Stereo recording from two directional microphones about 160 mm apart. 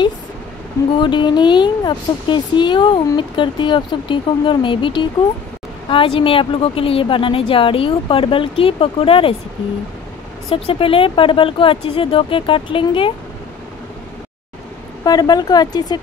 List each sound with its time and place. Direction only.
0.9 s a woman's voice: 30° left (ahead or behind)
10.5 s a woman's voice: 35° left (ahead or behind)
15.0 s speech: 25° left (ahead or behind)